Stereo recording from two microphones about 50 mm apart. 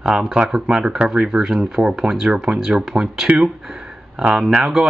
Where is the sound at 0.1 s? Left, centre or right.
Right; by 3.3 s centre.